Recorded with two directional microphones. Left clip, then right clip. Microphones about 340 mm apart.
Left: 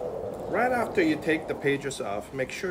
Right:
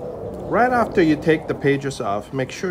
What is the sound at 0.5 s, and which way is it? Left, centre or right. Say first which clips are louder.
Speech: right 8 dB; centre.